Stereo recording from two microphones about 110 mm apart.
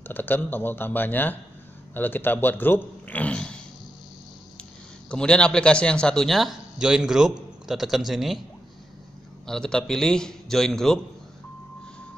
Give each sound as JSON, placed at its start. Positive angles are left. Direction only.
{"t": 0.1, "sound": "a man's voice", "side_deg": 15}
{"t": 5.1, "sound": "a man's voice", "side_deg": 10}
{"t": 9.5, "sound": "a man's voice", "side_deg": 5}